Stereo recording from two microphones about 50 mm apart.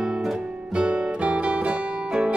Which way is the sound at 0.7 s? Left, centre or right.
Centre.